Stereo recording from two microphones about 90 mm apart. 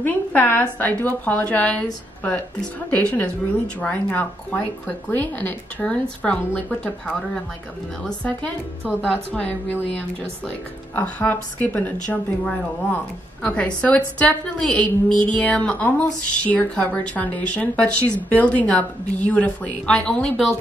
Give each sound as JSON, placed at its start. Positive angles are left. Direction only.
{"t": 0.0, "sound": "a woman's voice", "side_deg": 20}
{"t": 2.9, "sound": "a woman's voice", "side_deg": 15}